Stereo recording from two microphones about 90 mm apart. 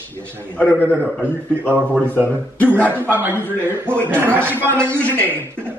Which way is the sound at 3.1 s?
20° right (ahead or behind).